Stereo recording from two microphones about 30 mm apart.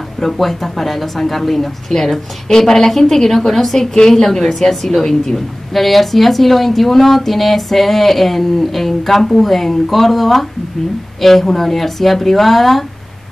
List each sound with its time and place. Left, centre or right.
0.2 s a woman's voice: centre
5.7 s a woman's voice: centre